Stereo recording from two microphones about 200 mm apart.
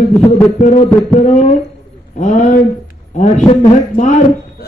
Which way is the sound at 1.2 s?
35° left (ahead or behind).